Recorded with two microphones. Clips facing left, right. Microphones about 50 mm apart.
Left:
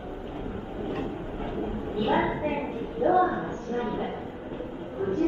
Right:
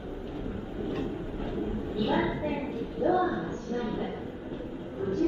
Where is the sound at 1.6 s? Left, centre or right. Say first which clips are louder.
Left 1 dB; left.